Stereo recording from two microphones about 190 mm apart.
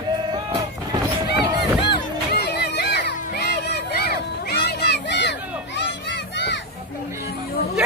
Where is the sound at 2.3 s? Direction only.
60° left (ahead or behind).